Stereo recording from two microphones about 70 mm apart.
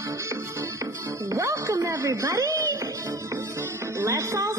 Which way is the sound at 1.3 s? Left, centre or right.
Right.